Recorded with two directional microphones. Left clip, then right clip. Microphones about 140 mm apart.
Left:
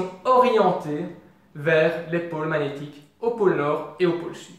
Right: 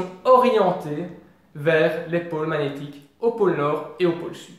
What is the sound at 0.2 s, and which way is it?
Speech, 25° right (ahead or behind).